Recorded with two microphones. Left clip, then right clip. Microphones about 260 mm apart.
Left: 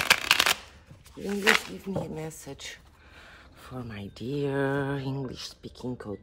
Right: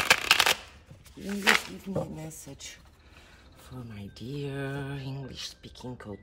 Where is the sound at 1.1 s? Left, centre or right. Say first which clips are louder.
Left 1 dB; centre.